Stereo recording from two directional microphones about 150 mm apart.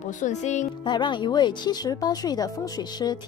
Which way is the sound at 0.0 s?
55° left (ahead or behind).